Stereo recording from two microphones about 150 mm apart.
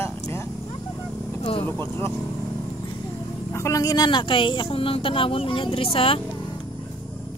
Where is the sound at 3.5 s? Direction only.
20° left (ahead or behind); by 6.1 s 40° left (ahead or behind).